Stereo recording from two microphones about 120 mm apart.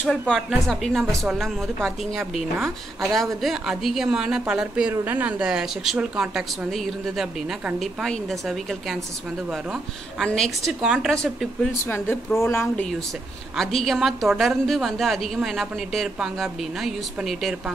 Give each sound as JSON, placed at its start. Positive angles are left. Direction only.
{"t": 0.3, "sound": "a woman's voice", "side_deg": 5}
{"t": 4.9, "sound": "a woman's voice", "side_deg": -15}
{"t": 11.8, "sound": "speech", "side_deg": 20}
{"t": 13.6, "sound": "a woman's voice", "side_deg": 0}